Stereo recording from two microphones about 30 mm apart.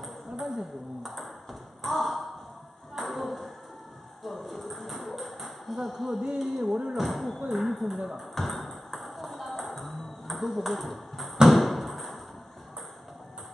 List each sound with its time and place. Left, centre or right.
0.0 s ping: centre
2.9 s a sound: centre
4.2 s ping: centre
6.3 s speech: centre
8.1 s ping: centre
11.5 s a sound: centre